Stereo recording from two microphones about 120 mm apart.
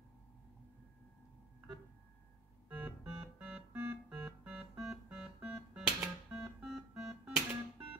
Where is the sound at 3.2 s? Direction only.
10° right (ahead or behind).